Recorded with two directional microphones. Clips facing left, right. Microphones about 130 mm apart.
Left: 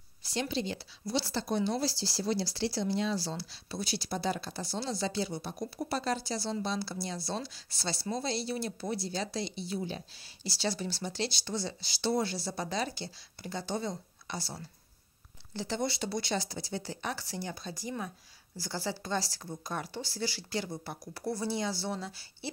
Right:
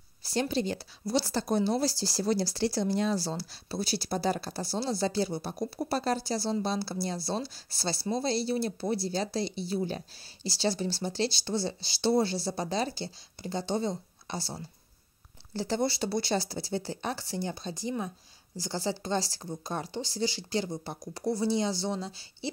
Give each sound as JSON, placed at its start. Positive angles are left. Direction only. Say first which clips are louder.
{"t": 0.2, "sound": "speech", "louder": "right 4 dB", "side_deg": -40}